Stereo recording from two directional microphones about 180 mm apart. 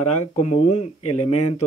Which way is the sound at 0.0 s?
40° left (ahead or behind).